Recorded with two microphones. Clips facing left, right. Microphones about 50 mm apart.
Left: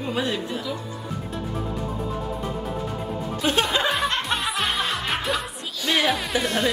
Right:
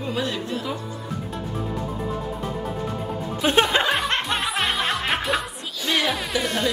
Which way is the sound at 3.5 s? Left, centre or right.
Right.